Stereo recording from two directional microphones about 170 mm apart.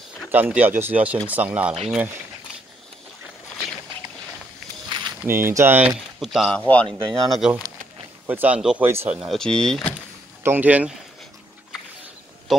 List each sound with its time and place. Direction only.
0.3 s speech: 10° right (ahead or behind)
4.8 s a sound: 25° right (ahead or behind)
5.2 s speech: 15° right (ahead or behind); by 9.9 s 5° left (ahead or behind)
10.4 s speech: 10° right (ahead or behind)
12.5 s speech: centre (ahead or behind)